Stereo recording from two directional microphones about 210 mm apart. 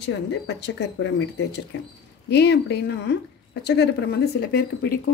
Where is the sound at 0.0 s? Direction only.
55° left (ahead or behind).